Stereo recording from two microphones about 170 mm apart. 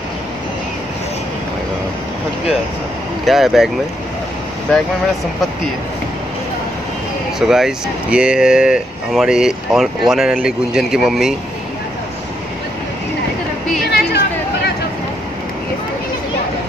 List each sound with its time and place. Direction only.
3.3 s speech: centre (ahead or behind)
7.3 s speech: 5° right (ahead or behind)
13.8 s a sound: 75° left (ahead or behind)